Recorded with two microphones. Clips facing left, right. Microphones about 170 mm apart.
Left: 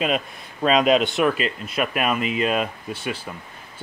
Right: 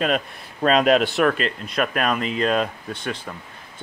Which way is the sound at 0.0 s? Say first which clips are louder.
Right 1 dB; 5° left (ahead or behind).